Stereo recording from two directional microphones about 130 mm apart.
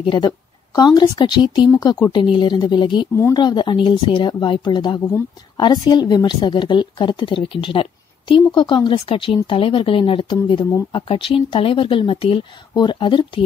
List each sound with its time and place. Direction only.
0.0 s a woman's voice: 35° left (ahead or behind)